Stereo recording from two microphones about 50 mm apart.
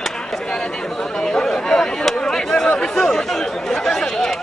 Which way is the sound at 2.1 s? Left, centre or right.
Centre.